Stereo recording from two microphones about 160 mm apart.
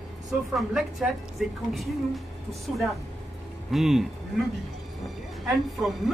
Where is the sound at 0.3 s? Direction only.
Centre (ahead or behind).